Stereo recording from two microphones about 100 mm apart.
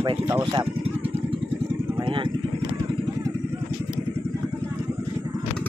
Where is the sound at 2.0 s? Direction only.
55° right (ahead or behind).